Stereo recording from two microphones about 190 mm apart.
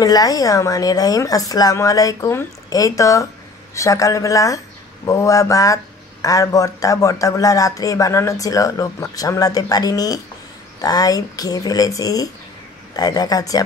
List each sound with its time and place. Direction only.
0.0 s a man's voice: 20° left (ahead or behind)